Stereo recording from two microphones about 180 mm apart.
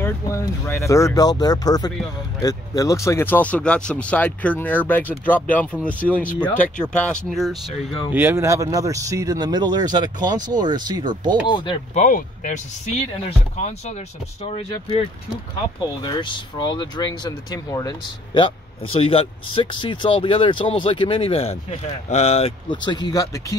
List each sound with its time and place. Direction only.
0.0 s speech: 15° left (ahead or behind)
8.1 s speech: 10° right (ahead or behind)
11.4 s speech: 25° left (ahead or behind)
16.0 s speech: 25° left (ahead or behind)
22.8 s speech: 25° left (ahead or behind)